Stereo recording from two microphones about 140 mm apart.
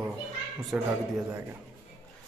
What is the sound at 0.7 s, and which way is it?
Speech, 5° right (ahead or behind).